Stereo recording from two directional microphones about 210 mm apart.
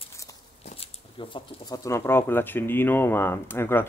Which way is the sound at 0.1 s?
15° left (ahead or behind).